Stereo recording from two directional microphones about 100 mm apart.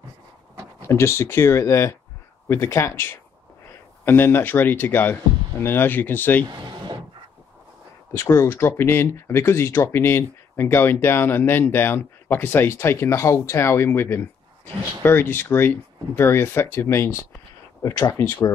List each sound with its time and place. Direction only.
0.8 s speech: 25° left (ahead or behind)
6.4 s a sound: 45° right (ahead or behind)
8.1 s speech: 30° left (ahead or behind)